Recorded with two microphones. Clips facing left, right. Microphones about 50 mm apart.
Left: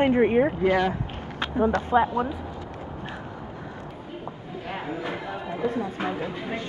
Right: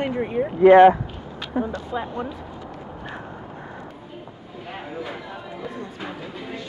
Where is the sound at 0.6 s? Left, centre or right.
Right.